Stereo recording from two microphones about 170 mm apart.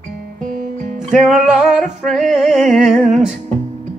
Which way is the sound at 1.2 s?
Centre (ahead or behind).